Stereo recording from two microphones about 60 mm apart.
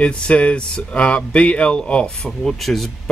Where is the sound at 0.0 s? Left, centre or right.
Centre.